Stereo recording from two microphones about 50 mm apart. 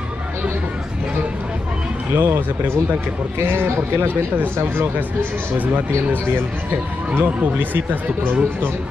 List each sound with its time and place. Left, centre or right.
2.1 s speech: right
7.2 s speech: right